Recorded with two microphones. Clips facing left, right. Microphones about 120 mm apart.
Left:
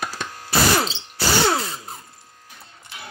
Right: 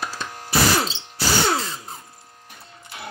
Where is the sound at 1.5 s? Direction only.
5° left (ahead or behind).